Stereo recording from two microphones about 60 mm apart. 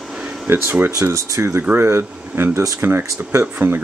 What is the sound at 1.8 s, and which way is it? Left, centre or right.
Speech, right.